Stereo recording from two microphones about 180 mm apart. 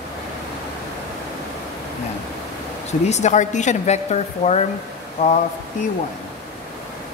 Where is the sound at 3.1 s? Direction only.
40° left (ahead or behind).